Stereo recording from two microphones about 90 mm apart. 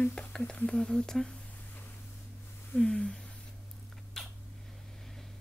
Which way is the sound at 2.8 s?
10° left (ahead or behind).